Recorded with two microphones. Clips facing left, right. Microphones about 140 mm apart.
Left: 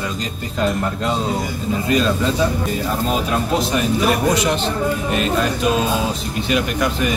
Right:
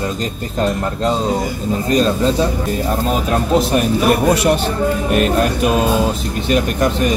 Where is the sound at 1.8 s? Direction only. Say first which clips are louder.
Right 3 dB; 40° right (ahead or behind).